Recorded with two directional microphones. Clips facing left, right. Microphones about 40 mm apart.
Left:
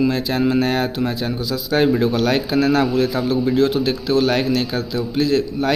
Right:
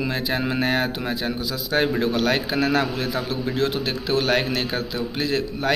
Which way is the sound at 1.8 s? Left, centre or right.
Centre.